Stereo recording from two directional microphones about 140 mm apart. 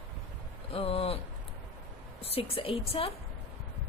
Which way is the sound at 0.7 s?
45° left (ahead or behind).